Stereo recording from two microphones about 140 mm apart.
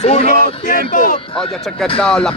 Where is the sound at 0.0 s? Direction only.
50° left (ahead or behind).